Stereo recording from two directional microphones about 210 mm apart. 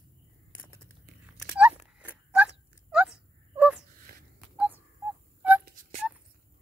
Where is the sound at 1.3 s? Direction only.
5° right (ahead or behind).